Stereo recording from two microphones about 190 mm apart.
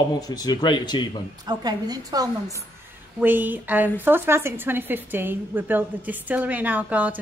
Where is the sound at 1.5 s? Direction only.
20° right (ahead or behind).